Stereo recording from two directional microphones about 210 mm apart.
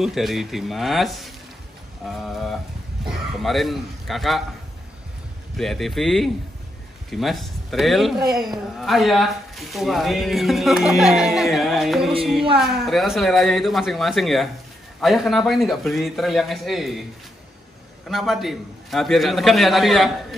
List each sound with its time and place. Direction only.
0.0 s speech: centre (ahead or behind)
5.6 s speech: centre (ahead or behind)
18.0 s speech: centre (ahead or behind)